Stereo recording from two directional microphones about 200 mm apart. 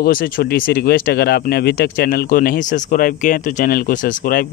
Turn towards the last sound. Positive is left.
turn(degrees=45)  # may be behind; listen again after turning